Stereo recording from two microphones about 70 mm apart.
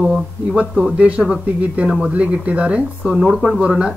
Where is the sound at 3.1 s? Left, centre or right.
Centre.